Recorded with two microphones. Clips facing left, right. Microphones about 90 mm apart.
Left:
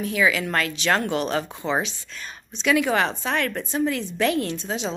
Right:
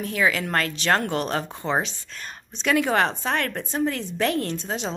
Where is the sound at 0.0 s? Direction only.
40° right (ahead or behind).